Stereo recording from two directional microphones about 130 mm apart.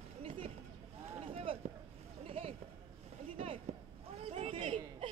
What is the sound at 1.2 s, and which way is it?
Boat, 45° right (ahead or behind).